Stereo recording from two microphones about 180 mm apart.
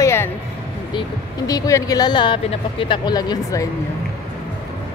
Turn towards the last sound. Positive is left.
turn(degrees=20)  # may be behind; listen again after turning